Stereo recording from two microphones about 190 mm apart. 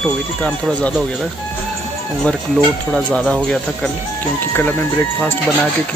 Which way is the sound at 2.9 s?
5° left (ahead or behind).